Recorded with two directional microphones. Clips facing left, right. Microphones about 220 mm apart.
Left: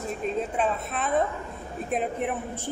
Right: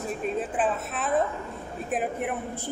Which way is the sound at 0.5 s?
5° right (ahead or behind).